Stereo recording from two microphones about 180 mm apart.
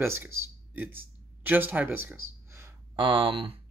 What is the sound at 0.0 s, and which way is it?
Speech, 15° right (ahead or behind).